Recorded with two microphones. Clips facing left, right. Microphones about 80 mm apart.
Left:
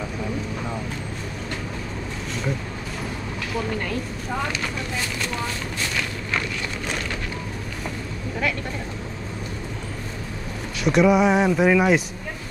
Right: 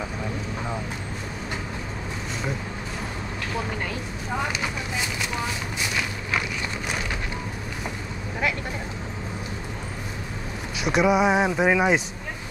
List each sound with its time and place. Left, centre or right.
3.5 s speech: centre
10.8 s speech: centre